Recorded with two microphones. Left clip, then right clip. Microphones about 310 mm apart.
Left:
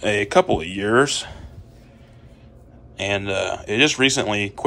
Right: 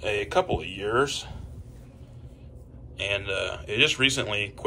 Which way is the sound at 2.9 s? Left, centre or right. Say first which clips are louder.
Left 5 dB; centre.